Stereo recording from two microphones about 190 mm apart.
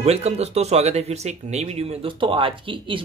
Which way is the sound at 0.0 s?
35° right (ahead or behind).